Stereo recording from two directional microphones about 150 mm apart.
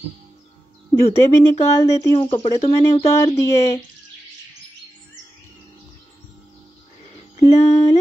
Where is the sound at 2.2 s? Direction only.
35° left (ahead or behind).